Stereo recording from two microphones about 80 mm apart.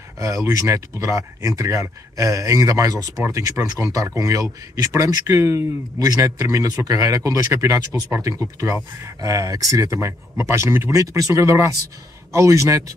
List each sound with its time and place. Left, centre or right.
0.2 s speech: right
5.9 s speech: right